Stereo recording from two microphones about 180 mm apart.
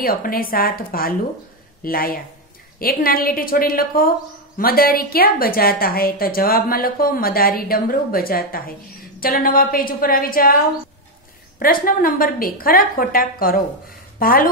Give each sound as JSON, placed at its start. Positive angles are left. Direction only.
{"t": 0.0, "sound": "a woman's voice", "side_deg": 55}
{"t": 11.6, "sound": "a woman's voice", "side_deg": 50}